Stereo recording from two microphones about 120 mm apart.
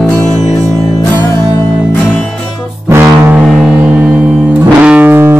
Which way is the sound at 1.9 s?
10° left (ahead or behind).